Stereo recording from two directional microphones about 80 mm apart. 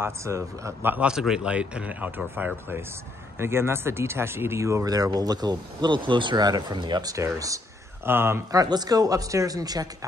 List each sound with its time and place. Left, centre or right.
0.0 s a man's voice: right
1.0 s speech: centre; by 7.2 s right
7.2 s speech: right
8.0 s speech: right
8.5 s speech: right